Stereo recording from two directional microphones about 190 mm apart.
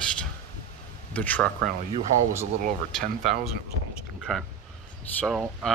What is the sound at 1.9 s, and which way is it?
Speech, 35° right (ahead or behind).